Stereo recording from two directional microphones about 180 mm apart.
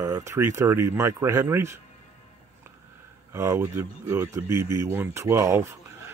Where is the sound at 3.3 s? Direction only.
15° right (ahead or behind).